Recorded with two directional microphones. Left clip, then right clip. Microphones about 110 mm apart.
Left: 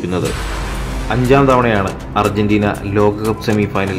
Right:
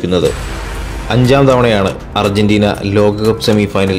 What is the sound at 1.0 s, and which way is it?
Speech, 50° right (ahead or behind).